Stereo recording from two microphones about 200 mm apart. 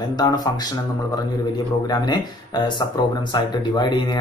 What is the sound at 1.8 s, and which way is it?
Speech, 20° left (ahead or behind).